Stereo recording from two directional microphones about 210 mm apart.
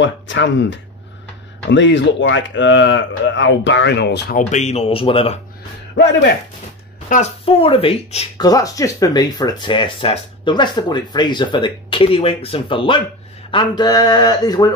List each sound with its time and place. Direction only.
0.0 s speech: 60° left (ahead or behind)
4.4 s speech: 35° left (ahead or behind)
7.1 s speech: 30° left (ahead or behind)
8.5 s speech: 15° left (ahead or behind)